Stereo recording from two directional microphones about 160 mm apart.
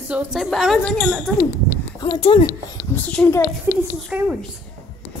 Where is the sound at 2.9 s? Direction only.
10° left (ahead or behind).